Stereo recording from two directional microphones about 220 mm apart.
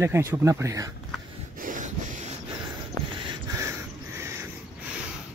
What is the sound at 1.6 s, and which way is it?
Snort, 35° right (ahead or behind).